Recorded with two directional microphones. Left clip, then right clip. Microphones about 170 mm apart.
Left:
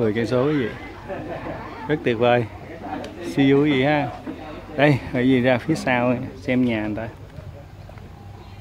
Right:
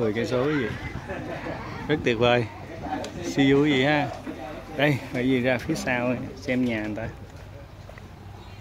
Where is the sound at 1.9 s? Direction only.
5° left (ahead or behind).